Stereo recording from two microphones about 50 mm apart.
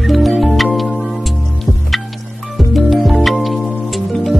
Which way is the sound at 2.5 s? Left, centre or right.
Centre.